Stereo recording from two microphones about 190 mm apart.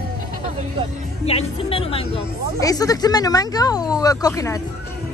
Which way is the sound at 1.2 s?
30° left (ahead or behind).